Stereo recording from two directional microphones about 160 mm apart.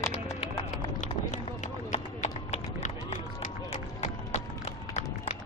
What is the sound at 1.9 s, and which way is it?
Run, 50° left (ahead or behind).